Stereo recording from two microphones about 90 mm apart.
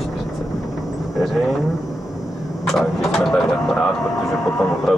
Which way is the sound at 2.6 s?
5° left (ahead or behind).